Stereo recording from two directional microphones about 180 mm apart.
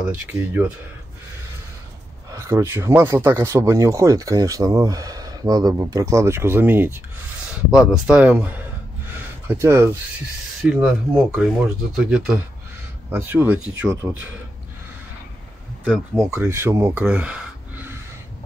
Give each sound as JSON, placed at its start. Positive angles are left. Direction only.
{"t": 0.0, "sound": "speech", "side_deg": -10}
{"t": 2.3, "sound": "speech", "side_deg": -15}
{"t": 15.9, "sound": "speech", "side_deg": -15}